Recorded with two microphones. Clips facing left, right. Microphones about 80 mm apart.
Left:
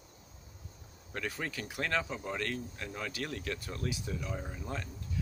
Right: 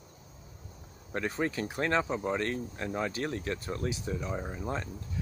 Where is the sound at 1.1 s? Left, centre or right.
Right.